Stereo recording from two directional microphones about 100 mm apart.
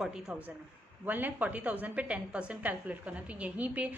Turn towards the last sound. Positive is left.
turn(degrees=-15)  # may be behind; listen again after turning